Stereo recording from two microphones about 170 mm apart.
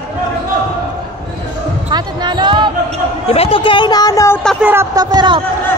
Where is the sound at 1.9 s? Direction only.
25° right (ahead or behind).